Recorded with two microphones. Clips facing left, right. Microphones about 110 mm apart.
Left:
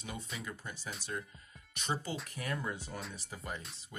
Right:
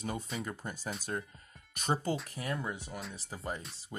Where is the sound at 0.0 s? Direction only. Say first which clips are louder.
Right 6 dB; 40° right (ahead or behind).